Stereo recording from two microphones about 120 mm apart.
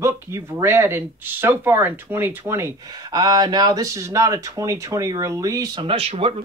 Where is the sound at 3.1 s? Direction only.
35° right (ahead or behind).